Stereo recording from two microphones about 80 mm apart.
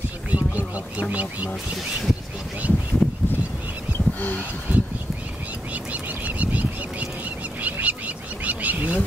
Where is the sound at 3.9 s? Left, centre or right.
Left.